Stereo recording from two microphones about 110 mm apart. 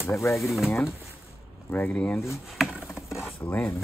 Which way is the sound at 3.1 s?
5° right (ahead or behind).